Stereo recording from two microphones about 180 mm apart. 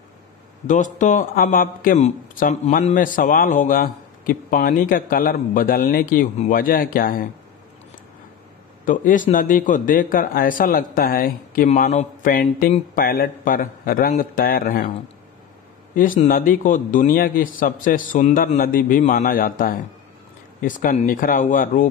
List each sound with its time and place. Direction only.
0.7 s speech: 45° left (ahead or behind)
8.8 s speech: 45° left (ahead or behind)
15.9 s speech: 50° left (ahead or behind)